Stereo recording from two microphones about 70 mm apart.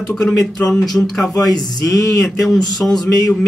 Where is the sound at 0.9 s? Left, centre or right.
Centre.